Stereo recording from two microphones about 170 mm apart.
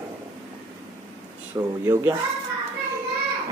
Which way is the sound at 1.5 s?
15° right (ahead or behind).